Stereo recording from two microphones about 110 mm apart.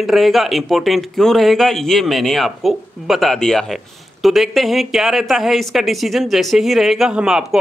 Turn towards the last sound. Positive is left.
turn(degrees=-5)  # may be behind; listen again after turning